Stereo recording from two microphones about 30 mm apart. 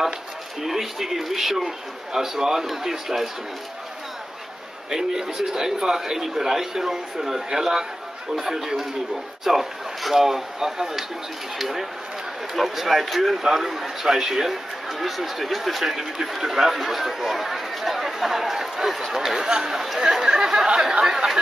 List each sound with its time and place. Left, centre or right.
0.7 s a man's voice: centre
4.9 s a man's voice: centre
19.4 s speech: right
19.7 s a man's voice: centre